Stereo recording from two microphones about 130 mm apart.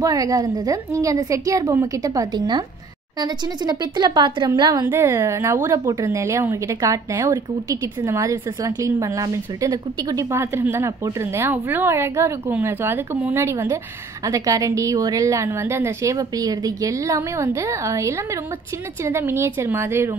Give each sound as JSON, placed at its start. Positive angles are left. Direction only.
{"t": 0.0, "sound": "a woman's voice", "side_deg": -25}
{"t": 4.8, "sound": "a woman's voice", "side_deg": -20}